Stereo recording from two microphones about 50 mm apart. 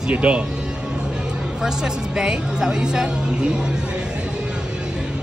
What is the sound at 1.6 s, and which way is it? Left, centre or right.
A woman's voice, centre.